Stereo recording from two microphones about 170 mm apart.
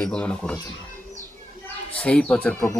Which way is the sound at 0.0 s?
5° left (ahead or behind).